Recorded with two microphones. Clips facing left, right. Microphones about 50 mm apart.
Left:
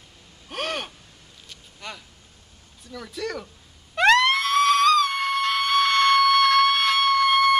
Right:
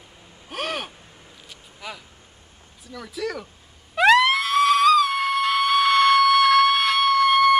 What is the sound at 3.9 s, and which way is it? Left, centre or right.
Music, centre.